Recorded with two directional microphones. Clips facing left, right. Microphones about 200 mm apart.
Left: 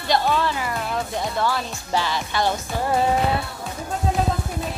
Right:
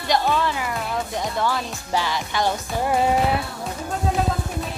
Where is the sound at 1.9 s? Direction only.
15° right (ahead or behind).